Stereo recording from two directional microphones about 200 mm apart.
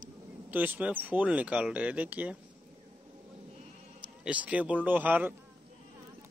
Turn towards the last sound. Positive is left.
turn(degrees=-10)  # may be behind; listen again after turning